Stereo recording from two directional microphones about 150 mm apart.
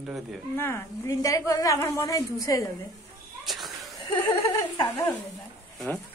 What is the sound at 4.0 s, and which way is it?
Speech, 30° left (ahead or behind).